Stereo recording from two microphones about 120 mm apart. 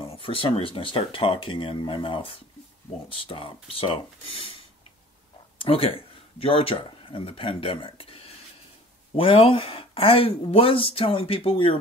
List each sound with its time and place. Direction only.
0.0 s speech: 50° left (ahead or behind)
5.6 s speech: 50° left (ahead or behind)